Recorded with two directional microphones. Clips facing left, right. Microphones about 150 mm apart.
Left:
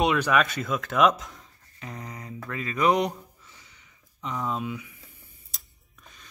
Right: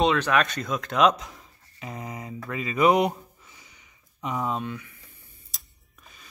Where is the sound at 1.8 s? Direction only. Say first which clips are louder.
Right 3 dB; 5° right (ahead or behind).